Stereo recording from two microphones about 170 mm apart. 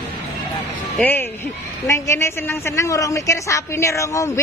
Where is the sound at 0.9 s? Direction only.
10° left (ahead or behind).